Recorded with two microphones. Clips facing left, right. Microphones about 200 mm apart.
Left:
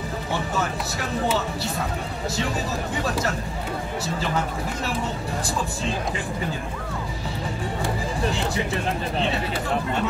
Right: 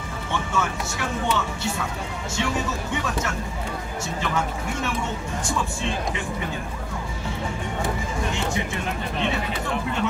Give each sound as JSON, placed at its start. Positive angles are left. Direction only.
{"t": 0.3, "sound": "speech", "side_deg": 35}
{"t": 8.2, "sound": "speech", "side_deg": 35}